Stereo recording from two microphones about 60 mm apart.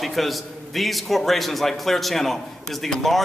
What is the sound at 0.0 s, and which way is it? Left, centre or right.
A man's voice, centre.